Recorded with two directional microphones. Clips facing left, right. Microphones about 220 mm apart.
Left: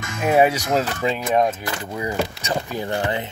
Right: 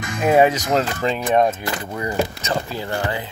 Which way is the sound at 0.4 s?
10° left (ahead or behind).